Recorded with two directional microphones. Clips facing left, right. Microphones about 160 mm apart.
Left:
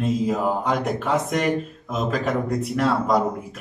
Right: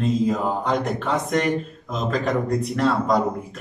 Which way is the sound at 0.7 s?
5° left (ahead or behind).